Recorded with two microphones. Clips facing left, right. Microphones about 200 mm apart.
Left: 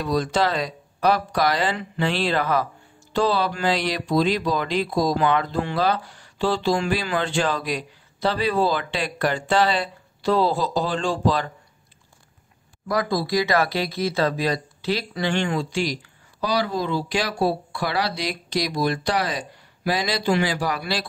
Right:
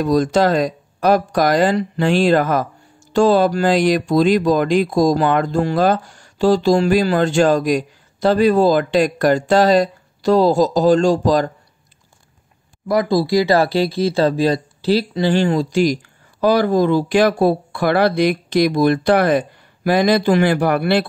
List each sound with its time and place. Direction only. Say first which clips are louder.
0.0 s speech: right 7 dB; 45° right (ahead or behind)
12.8 s speech: right 7 dB; 25° right (ahead or behind); by 21.1 s 60° right (ahead or behind)